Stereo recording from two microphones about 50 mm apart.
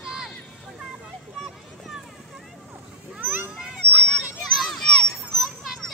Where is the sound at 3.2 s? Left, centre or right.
Right.